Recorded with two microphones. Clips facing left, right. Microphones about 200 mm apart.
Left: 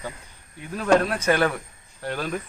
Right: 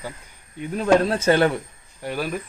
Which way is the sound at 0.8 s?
25° right (ahead or behind).